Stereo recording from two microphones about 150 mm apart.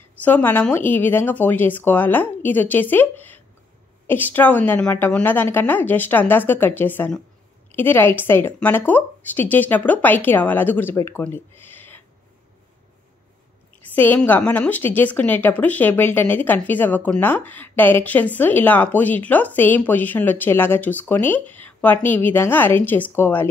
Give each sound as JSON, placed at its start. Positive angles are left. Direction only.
{"t": 0.2, "sound": "speech", "side_deg": 10}
{"t": 13.9, "sound": "speech", "side_deg": 10}